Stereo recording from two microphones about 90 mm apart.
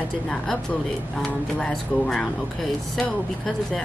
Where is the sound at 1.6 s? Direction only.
10° left (ahead or behind).